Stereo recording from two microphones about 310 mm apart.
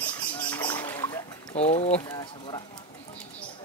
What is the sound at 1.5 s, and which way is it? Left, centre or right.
Speech, centre.